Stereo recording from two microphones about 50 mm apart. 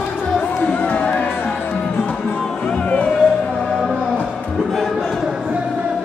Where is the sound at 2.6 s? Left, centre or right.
Left.